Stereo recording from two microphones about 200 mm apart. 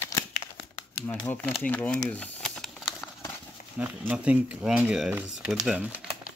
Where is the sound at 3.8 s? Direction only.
5° right (ahead or behind).